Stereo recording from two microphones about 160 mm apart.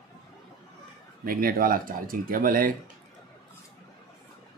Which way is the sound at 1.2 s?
65° right (ahead or behind).